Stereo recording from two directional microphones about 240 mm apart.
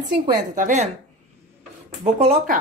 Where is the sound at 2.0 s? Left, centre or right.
Right.